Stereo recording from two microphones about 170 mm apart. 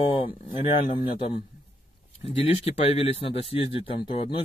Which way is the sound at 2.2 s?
35° left (ahead or behind).